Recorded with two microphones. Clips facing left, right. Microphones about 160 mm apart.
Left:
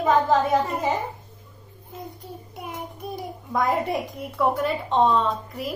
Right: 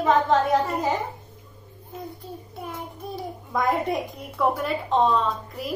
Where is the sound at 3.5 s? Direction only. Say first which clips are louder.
Even; centre (ahead or behind).